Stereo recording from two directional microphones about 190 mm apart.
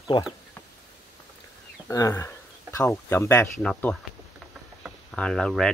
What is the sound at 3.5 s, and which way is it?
Speech, 5° left (ahead or behind).